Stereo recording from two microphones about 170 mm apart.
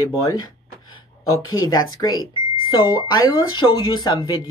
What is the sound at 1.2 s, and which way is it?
Speech, 20° left (ahead or behind).